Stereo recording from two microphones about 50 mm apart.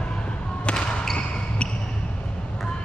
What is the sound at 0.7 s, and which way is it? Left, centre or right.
Basketball bounce, centre.